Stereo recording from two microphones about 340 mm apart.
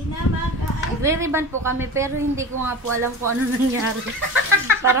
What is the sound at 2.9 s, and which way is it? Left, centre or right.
Speech, right.